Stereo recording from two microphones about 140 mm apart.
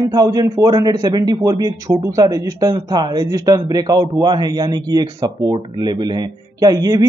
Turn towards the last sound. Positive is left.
turn(degrees=-30)  # may be behind; listen again after turning